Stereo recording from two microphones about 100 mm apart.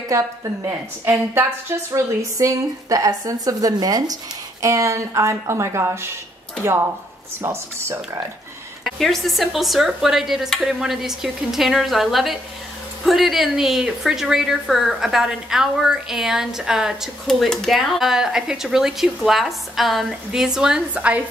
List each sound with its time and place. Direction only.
0.7 s a woman's voice: 25° right (ahead or behind)
8.8 s a woman's voice: centre (ahead or behind)